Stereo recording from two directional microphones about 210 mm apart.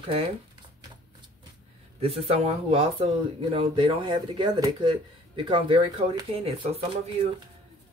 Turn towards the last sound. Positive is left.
turn(degrees=-30)  # may be behind; listen again after turning